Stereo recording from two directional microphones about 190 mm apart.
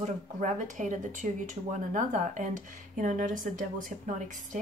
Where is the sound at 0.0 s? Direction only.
40° right (ahead or behind).